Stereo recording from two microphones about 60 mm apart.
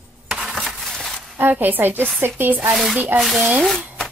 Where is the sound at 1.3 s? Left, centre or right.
Right.